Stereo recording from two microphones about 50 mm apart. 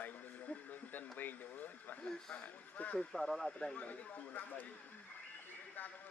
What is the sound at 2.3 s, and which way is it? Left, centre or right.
Speech, left.